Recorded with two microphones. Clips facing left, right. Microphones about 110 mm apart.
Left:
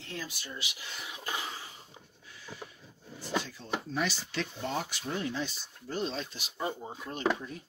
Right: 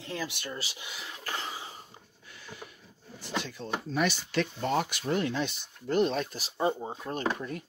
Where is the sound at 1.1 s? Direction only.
10° left (ahead or behind).